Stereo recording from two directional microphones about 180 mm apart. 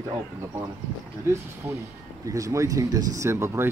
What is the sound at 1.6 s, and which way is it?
Speech, 15° right (ahead or behind).